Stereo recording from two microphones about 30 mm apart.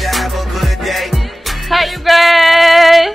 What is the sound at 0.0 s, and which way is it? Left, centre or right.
Music, centre.